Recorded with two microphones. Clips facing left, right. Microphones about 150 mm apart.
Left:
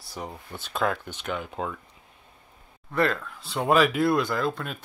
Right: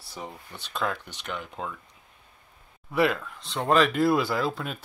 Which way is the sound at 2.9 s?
10° right (ahead or behind).